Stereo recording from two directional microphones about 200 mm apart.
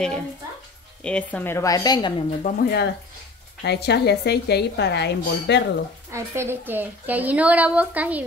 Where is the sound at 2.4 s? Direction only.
50° left (ahead or behind).